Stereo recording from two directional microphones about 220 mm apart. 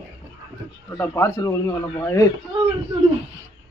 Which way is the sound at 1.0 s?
10° left (ahead or behind).